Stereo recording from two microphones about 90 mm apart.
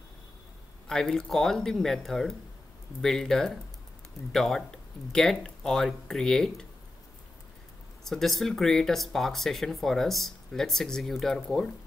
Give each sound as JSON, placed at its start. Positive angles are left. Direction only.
{"t": 0.8, "sound": "speech", "side_deg": 5}
{"t": 8.0, "sound": "speech", "side_deg": 5}